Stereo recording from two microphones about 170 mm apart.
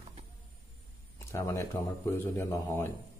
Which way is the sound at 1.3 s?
15° left (ahead or behind).